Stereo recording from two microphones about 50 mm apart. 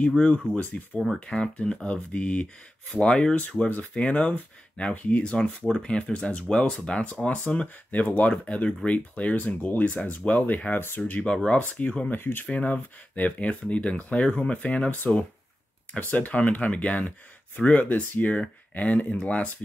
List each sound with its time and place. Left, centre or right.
0.2 s speech: left
12.1 s speech: left
12.4 s speech: left